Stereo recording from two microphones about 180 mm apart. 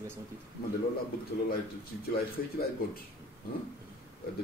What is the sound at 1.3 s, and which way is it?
Speech, 65° left (ahead or behind).